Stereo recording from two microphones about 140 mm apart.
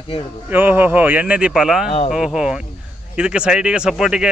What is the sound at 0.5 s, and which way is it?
Speech, 15° right (ahead or behind).